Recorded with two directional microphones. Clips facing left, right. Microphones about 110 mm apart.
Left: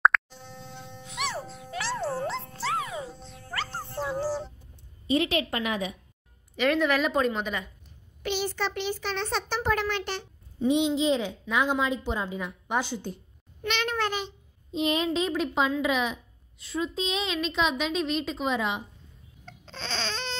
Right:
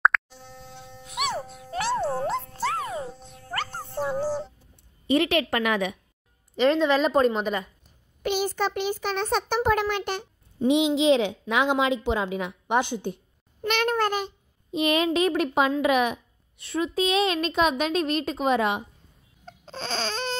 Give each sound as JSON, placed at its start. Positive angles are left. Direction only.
{"t": 0.0, "sound": "plop", "side_deg": 0}
{"t": 1.0, "sound": "music", "side_deg": -55}
{"t": 5.0, "sound": "a child's voice", "side_deg": -65}
{"t": 6.5, "sound": "a woman's voice", "side_deg": -30}
{"t": 7.1, "sound": "a woman's voice", "side_deg": -40}
{"t": 10.7, "sound": "a child's voice", "side_deg": -90}
{"t": 13.8, "sound": "a woman's voice", "side_deg": -45}
{"t": 14.7, "sound": "a child's voice", "side_deg": -75}
{"t": 15.0, "sound": "a woman's voice", "side_deg": -65}
{"t": 19.4, "sound": "baby cry", "side_deg": -40}